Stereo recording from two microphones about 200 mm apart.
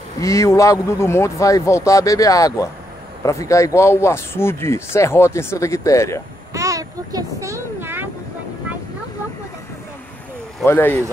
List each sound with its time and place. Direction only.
0.2 s speech: 15° left (ahead or behind)
6.5 s a sound: 15° right (ahead or behind)
10.6 s speech: 10° left (ahead or behind)